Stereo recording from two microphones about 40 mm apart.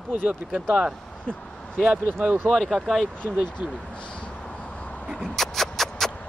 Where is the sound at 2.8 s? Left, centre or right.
Right.